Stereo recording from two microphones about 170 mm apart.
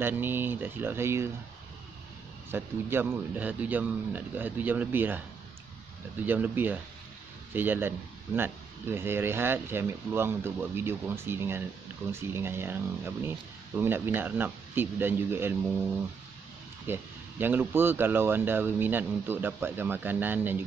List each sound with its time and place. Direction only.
0.0 s speech: 10° right (ahead or behind)
2.5 s speech: 15° right (ahead or behind)
6.2 s speech: 10° right (ahead or behind)